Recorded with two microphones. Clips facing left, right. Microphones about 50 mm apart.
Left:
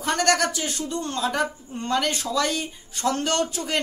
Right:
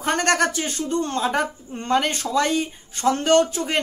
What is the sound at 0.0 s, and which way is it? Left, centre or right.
Speech, right.